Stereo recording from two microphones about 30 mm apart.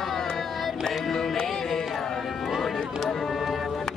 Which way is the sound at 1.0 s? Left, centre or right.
Centre.